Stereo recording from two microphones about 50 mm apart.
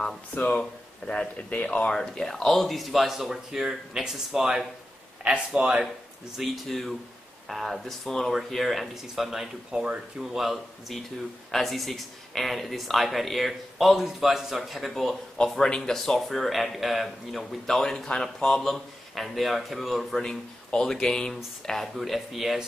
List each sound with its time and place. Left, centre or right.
0.3 s speech: left
2.0 s speech: centre
5.2 s speech: right
6.3 s speech: centre
9.7 s speech: centre
10.3 s speech: centre
16.2 s speech: centre
20.2 s speech: centre
21.6 s speech: centre